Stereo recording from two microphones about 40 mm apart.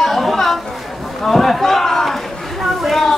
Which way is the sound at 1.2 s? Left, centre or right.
Centre.